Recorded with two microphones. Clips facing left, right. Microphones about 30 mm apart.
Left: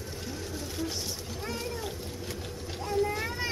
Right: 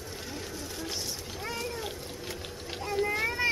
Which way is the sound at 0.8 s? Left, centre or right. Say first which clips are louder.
Left 2 dB; centre.